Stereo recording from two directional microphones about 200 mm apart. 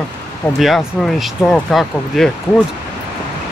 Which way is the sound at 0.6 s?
Centre (ahead or behind).